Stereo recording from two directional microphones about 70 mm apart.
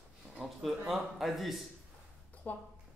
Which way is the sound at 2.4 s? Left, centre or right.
Left.